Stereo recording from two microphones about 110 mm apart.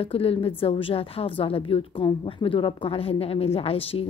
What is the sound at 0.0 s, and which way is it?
A woman's voice, 60° left (ahead or behind).